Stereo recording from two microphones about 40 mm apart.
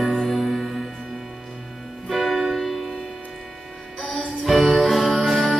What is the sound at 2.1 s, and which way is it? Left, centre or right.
Music, centre.